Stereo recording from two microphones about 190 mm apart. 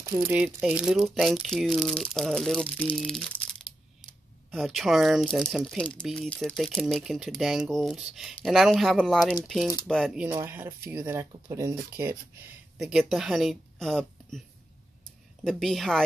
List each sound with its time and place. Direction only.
0.0 s speech: 15° right (ahead or behind); by 3.2 s 5° left (ahead or behind)
3.7 s crushing: 30° left (ahead or behind)
4.6 s speech: centre (ahead or behind)
10.2 s speech: 10° right (ahead or behind)
12.7 s speech: centre (ahead or behind)
15.4 s speech: centre (ahead or behind)